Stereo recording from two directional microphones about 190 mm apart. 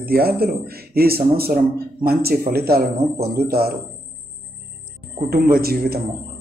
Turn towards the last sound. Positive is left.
turn(degrees=-50)  # may be behind; listen again after turning